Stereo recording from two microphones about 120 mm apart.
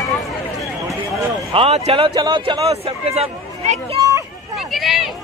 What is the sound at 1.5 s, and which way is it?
A man's voice, 55° right (ahead or behind).